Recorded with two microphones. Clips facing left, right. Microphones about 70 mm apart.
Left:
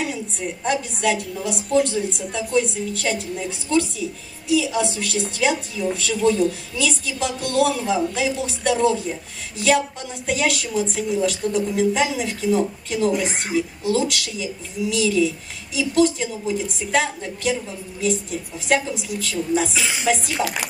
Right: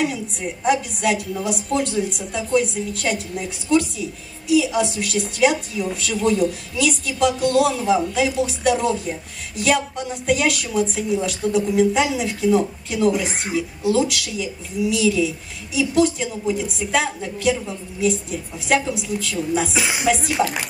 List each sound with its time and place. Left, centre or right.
0.0 s a woman's voice: centre
19.7 s music: centre